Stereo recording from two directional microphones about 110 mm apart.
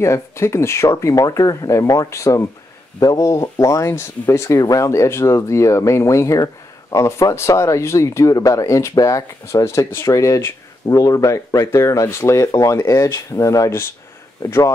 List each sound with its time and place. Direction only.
0.0 s speech: 25° left (ahead or behind)